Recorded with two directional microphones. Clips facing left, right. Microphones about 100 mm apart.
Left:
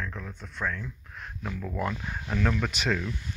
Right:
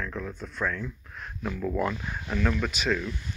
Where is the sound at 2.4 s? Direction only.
55° left (ahead or behind); by 3.0 s 75° left (ahead or behind).